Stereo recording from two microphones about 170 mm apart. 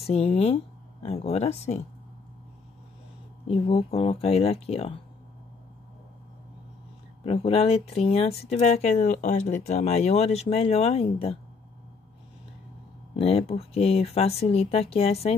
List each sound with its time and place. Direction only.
0.0 s speech: 35° left (ahead or behind)
3.4 s speech: 30° left (ahead or behind)
7.2 s speech: 35° left (ahead or behind)
13.1 s speech: 35° left (ahead or behind)